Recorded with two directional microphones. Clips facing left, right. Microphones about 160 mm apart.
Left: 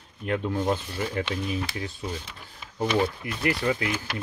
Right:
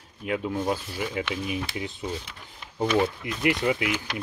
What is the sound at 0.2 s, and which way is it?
Speech, 5° right (ahead or behind).